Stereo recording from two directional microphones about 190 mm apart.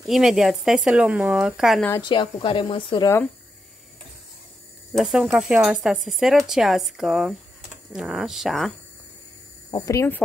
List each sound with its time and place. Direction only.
0.0 s speech: centre (ahead or behind)
1.9 s a woman's voice: 25° left (ahead or behind)
4.9 s speech: centre (ahead or behind)
9.7 s speech: 20° left (ahead or behind)